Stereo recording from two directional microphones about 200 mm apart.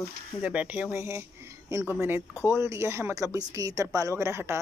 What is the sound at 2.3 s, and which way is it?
Speech, 15° left (ahead or behind).